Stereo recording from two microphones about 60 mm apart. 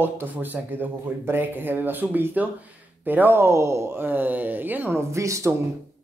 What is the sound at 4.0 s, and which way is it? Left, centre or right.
Speech, right.